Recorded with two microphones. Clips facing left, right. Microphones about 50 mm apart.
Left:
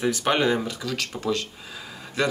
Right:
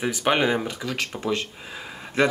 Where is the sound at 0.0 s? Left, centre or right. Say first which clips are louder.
Even; centre.